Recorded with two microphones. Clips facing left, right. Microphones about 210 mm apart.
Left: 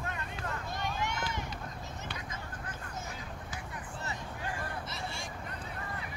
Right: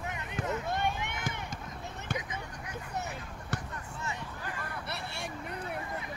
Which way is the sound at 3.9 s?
35° left (ahead or behind).